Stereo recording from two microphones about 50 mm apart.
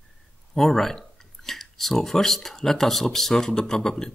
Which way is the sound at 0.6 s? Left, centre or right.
Centre.